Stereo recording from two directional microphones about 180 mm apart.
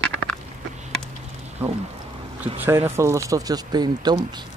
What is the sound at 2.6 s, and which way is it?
Speech, 15° right (ahead or behind).